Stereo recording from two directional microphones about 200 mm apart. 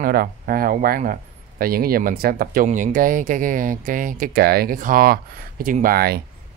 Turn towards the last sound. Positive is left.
turn(degrees=-50)  # may be behind; listen again after turning